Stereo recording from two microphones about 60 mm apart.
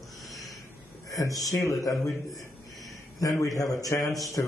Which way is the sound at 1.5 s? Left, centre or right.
Left.